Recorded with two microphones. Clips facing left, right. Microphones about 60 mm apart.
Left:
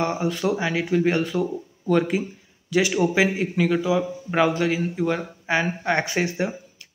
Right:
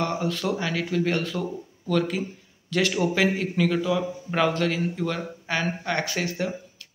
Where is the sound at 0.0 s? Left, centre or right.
Centre.